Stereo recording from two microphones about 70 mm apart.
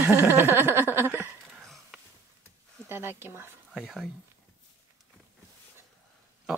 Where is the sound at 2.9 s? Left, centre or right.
Right.